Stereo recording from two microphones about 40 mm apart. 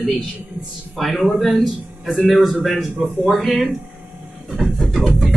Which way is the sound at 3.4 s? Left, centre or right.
Centre.